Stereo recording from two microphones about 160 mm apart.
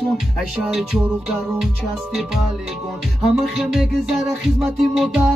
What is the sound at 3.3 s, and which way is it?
Music, 5° right (ahead or behind).